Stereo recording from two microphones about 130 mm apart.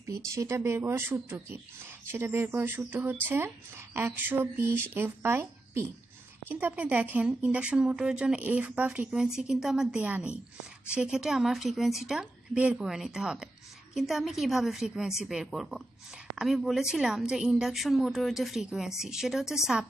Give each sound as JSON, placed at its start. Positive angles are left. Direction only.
{"t": 0.3, "sound": "a woman's voice", "side_deg": -20}